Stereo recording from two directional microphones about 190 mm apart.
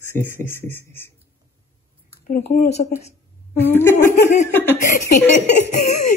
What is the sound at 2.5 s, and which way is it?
Speech, 45° left (ahead or behind).